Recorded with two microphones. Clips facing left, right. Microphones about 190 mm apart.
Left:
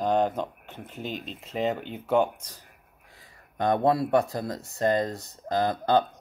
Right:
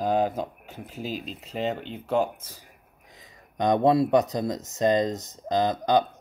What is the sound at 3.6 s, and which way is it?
Speech, 20° right (ahead or behind).